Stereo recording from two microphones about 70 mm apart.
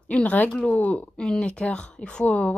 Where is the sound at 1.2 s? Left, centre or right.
Centre.